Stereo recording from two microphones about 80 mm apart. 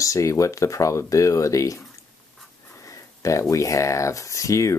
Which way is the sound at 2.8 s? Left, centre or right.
Left.